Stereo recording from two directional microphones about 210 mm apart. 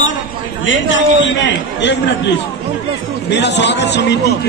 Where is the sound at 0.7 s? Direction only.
60° left (ahead or behind).